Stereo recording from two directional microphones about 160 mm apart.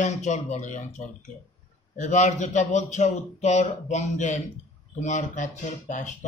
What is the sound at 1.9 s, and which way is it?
A man's voice, 50° left (ahead or behind).